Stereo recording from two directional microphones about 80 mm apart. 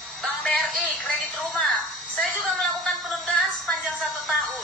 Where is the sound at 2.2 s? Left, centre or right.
Centre.